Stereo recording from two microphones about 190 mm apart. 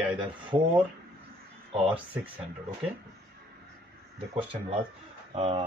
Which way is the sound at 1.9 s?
10° right (ahead or behind).